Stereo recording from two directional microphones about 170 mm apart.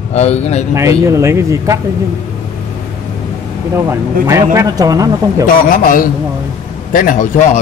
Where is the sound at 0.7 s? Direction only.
15° right (ahead or behind).